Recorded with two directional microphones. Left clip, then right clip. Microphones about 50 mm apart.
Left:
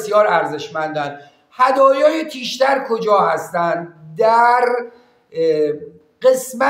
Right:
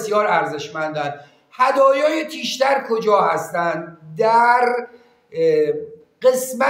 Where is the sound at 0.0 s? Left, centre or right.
Left.